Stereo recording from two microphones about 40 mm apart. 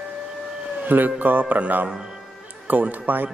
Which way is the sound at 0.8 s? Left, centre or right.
Right.